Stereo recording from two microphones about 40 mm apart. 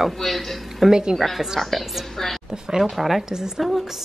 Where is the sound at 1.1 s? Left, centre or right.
Centre.